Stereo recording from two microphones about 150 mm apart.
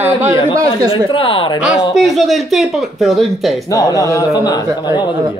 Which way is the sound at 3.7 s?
20° left (ahead or behind).